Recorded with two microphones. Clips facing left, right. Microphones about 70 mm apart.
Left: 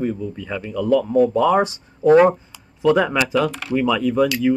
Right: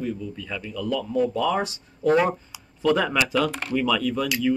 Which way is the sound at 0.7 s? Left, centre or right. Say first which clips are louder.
Left 8 dB; left.